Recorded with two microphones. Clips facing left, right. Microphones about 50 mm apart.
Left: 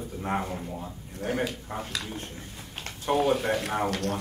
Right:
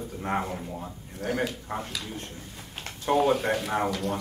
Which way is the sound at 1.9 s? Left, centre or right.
Left.